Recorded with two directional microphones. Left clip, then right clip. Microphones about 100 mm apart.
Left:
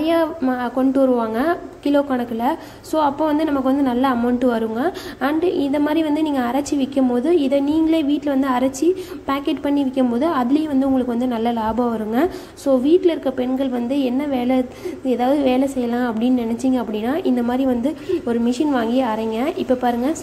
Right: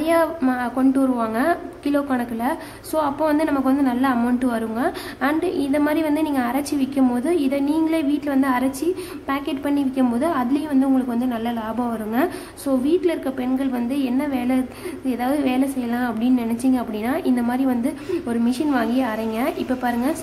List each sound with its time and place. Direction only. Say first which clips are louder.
0.0 s a woman's voice: even; 20° left (ahead or behind)
11.3 s a woman's voice: left 5 dB; 35° left (ahead or behind)